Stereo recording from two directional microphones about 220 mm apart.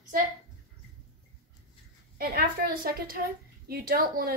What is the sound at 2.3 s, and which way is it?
A woman's voice, 45° right (ahead or behind).